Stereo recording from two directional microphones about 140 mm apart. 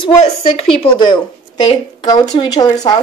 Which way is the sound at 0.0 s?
40° left (ahead or behind).